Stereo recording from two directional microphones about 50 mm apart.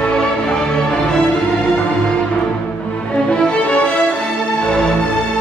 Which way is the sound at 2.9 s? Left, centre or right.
Left.